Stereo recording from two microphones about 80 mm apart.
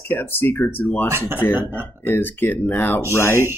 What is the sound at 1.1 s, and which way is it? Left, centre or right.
Speech, right.